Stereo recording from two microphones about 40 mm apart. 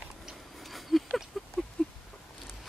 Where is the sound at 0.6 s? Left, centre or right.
Centre.